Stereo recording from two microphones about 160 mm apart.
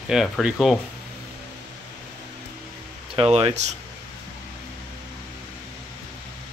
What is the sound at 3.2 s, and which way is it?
Speech, 35° right (ahead or behind).